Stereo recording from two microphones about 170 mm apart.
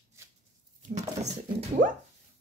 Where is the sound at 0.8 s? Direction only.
45° right (ahead or behind).